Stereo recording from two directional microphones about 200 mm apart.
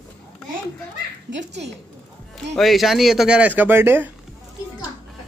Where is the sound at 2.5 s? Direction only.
Centre (ahead or behind).